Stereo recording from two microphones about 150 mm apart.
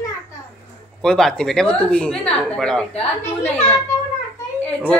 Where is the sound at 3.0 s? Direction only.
45° left (ahead or behind).